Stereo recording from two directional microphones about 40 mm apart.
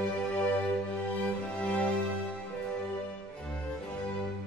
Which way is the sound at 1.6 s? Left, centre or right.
Left.